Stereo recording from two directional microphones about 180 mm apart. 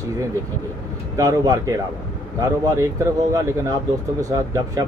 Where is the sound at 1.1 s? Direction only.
20° right (ahead or behind).